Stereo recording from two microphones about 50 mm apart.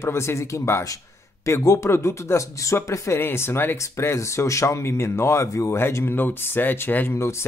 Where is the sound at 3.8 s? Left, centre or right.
Left.